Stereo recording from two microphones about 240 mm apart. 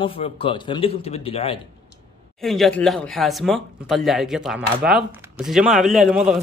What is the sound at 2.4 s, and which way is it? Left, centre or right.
Speech, centre.